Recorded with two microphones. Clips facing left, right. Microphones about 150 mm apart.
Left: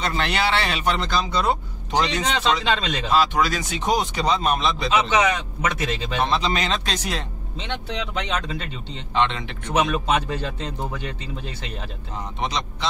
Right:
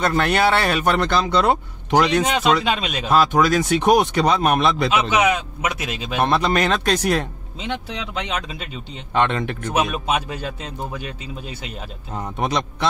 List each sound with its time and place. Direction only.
0.0 s speech: 50° right (ahead or behind)
2.2 s a man's voice: 10° right (ahead or behind)
3.1 s speech: 50° right (ahead or behind)
5.1 s a man's voice: 10° right (ahead or behind)
6.2 s speech: 55° right (ahead or behind)
7.6 s a man's voice: 5° right (ahead or behind)
9.1 s speech: 50° right (ahead or behind)
9.8 s a man's voice: 10° right (ahead or behind)
12.4 s speech: 55° right (ahead or behind)